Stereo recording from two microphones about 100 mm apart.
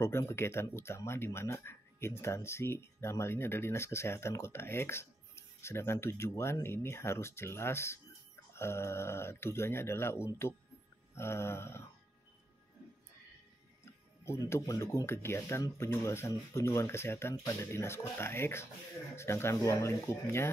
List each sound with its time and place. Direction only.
0.0 s speech: 25° left (ahead or behind)
14.5 s speech: 25° left (ahead or behind)